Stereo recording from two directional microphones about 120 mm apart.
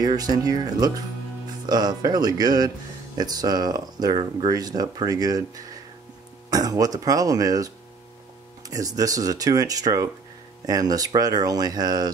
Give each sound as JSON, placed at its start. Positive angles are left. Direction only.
{"t": 0.0, "sound": "speech", "side_deg": -35}